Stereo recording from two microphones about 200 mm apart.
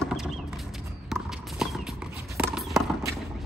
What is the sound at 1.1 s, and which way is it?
Clip-clop, centre (ahead or behind).